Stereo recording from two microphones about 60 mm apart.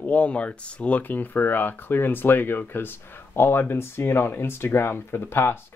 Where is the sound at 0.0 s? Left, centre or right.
Left.